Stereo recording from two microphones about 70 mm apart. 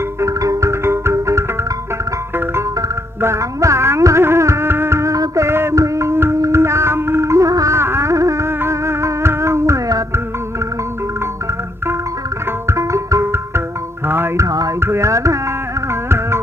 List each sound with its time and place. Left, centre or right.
0.2 s music: right
3.2 s music: right
8.5 s music: right
12.6 s music: right
14.4 s music: right
14.8 s music: right